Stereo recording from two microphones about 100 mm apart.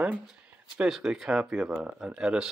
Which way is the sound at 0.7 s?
5° right (ahead or behind).